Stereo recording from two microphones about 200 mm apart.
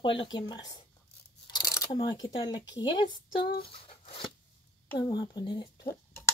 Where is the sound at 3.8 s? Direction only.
30° left (ahead or behind).